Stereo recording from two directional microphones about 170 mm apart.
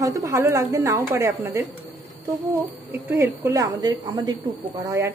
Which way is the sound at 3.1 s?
15° right (ahead or behind).